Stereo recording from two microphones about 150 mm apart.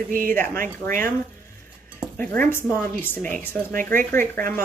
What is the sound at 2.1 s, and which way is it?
Speech, 10° left (ahead or behind).